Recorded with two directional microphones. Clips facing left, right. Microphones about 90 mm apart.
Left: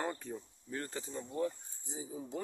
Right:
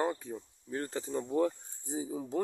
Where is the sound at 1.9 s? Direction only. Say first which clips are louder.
Right 7 dB; 55° right (ahead or behind).